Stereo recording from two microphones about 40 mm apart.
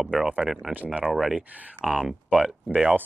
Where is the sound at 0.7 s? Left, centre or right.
Right.